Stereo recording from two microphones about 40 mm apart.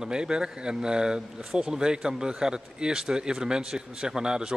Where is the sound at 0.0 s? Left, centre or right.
Right.